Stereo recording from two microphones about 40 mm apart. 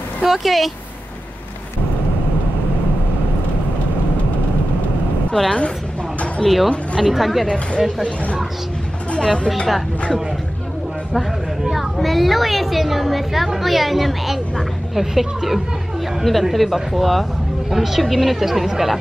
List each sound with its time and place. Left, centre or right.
0.2 s speech: centre
5.3 s a woman's voice: centre
6.4 s speech: centre
7.4 s speech: left
11.7 s speech: centre